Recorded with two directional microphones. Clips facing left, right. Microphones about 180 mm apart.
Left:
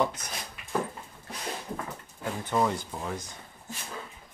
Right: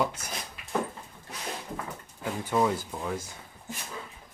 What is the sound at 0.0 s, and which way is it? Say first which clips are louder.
Speech: left 1 dB; 10° right (ahead or behind).